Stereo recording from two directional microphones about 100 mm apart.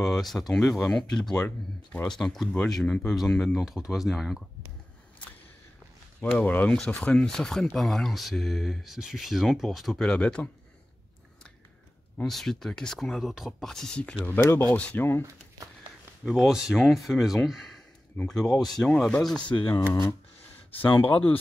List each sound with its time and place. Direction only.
0.0 s speech: centre (ahead or behind)
6.3 s speech: 15° left (ahead or behind)
12.2 s speech: 5° left (ahead or behind); by 14.8 s 25° left (ahead or behind)
14.8 s speech: 10° left (ahead or behind)
16.3 s speech: centre (ahead or behind)
19.5 s speech: 25° left (ahead or behind)
20.7 s speech: 20° left (ahead or behind)